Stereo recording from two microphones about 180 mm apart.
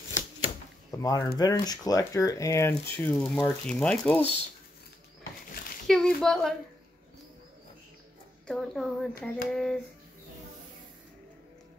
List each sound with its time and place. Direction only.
0.9 s speech: 20° left (ahead or behind)
5.9 s speech: 5° left (ahead or behind)
8.5 s speech: centre (ahead or behind)